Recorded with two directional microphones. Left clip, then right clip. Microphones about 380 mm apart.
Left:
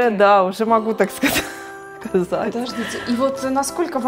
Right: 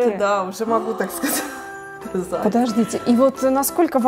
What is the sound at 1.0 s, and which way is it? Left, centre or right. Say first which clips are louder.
Speech: left 5 dB; left.